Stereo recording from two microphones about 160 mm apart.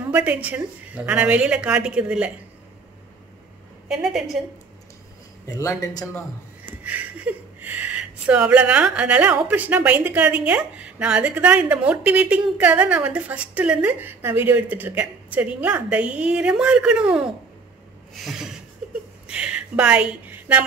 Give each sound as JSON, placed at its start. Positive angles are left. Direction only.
{"t": 0.1, "sound": "speech", "side_deg": -10}
{"t": 3.9, "sound": "a woman's voice", "side_deg": -5}
{"t": 5.6, "sound": "speech", "side_deg": 20}
{"t": 6.8, "sound": "a woman's voice", "side_deg": -10}